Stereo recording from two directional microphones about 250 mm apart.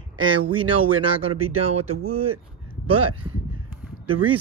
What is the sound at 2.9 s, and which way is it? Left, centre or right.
Speech, right.